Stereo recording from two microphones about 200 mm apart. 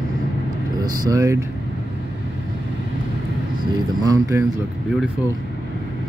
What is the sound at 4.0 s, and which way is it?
Speech, 15° right (ahead or behind).